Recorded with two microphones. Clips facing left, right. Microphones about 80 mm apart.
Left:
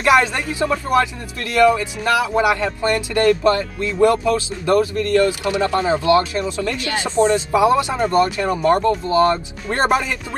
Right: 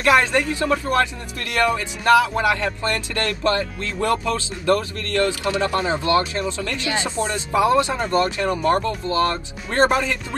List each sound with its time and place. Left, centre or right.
0.1 s speech: centre